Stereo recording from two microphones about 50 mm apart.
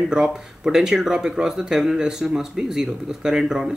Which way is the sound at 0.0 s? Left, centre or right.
Centre.